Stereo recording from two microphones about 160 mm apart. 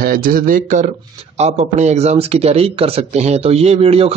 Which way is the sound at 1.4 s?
45° right (ahead or behind).